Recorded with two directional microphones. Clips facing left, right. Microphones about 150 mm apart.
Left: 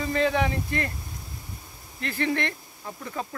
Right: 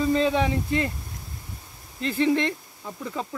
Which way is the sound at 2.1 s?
10° right (ahead or behind).